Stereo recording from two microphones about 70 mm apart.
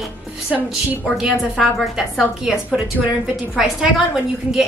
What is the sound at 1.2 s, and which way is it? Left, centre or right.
A woman's voice, centre.